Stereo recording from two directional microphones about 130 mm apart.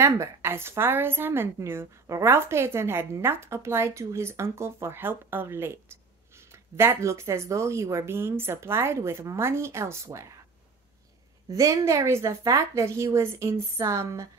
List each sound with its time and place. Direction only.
0.0 s a woman's voice: 20° right (ahead or behind)
11.5 s a woman's voice: 25° right (ahead or behind)